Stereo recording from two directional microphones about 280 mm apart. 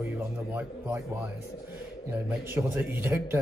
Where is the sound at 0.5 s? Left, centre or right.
Centre.